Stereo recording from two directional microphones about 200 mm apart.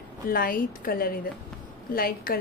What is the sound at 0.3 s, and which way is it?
A woman's voice, 45° left (ahead or behind).